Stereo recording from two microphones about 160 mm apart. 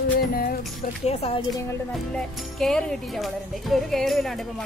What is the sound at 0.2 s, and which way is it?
Music, 65° left (ahead or behind).